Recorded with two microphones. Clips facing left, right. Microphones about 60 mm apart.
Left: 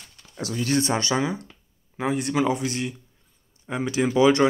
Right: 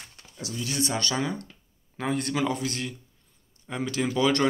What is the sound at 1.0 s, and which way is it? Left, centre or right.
Speech, centre.